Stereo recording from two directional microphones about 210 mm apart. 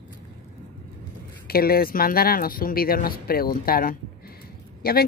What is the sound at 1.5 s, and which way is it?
Speech, 45° left (ahead or behind).